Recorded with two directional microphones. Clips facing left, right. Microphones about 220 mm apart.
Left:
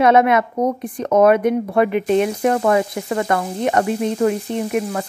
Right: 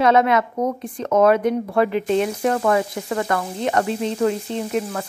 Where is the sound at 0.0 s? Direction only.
20° left (ahead or behind).